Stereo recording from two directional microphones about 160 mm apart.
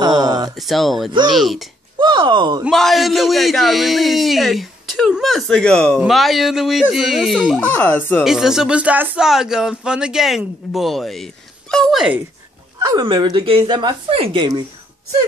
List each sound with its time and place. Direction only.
0.0 s a sound: 25° right (ahead or behind)
0.6 s speech: centre (ahead or behind)
2.0 s speech: 30° right (ahead or behind)
2.6 s speech: centre (ahead or behind)
8.2 s speech: 5° right (ahead or behind)
12.7 s speech: 25° right (ahead or behind)